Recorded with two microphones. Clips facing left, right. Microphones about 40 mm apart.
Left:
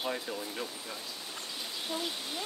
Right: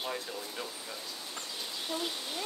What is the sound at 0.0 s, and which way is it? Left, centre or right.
Speech, centre.